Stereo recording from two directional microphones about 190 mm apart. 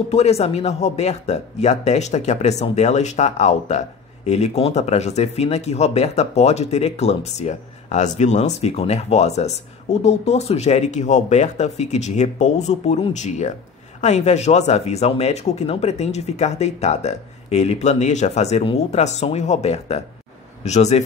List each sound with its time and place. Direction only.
0.1 s speech: 35° left (ahead or behind)